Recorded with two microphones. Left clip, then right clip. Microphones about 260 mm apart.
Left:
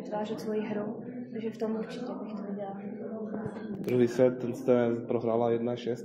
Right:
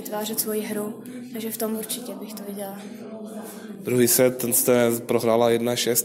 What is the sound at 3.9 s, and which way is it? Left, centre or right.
Speech, right.